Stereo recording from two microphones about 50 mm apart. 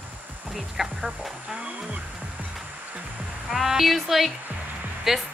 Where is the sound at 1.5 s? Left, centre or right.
Centre.